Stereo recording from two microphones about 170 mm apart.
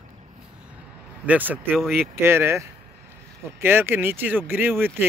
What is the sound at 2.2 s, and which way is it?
Speech, 15° right (ahead or behind).